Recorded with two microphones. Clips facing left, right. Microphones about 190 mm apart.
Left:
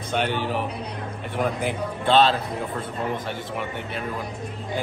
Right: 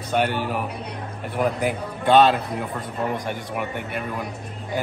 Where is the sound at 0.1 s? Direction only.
10° right (ahead or behind).